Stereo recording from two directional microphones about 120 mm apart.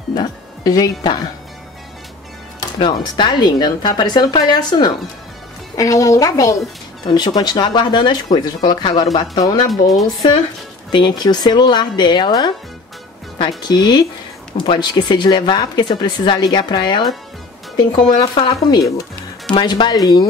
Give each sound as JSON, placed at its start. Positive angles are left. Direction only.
{"t": 0.1, "sound": "speech", "side_deg": 30}
{"t": 2.8, "sound": "a woman's voice", "side_deg": 40}
{"t": 9.7, "sound": "speech", "side_deg": 0}
{"t": 10.9, "sound": "speech", "side_deg": 35}
{"t": 13.6, "sound": "speech", "side_deg": 35}